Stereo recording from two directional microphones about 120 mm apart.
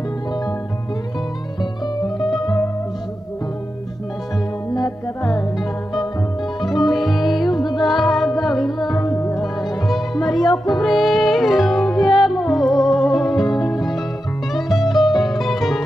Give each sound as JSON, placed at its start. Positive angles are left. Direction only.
{"t": 6.6, "sound": "music", "side_deg": 0}
{"t": 7.4, "sound": "music", "side_deg": 35}
{"t": 7.9, "sound": "music", "side_deg": 0}
{"t": 8.9, "sound": "music", "side_deg": 30}
{"t": 9.3, "sound": "music", "side_deg": 0}
{"t": 13.4, "sound": "music", "side_deg": 35}
{"t": 13.7, "sound": "music", "side_deg": 0}